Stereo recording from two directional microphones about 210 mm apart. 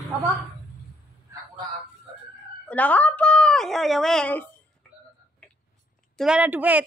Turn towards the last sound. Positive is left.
turn(degrees=-10)  # may be behind; listen again after turning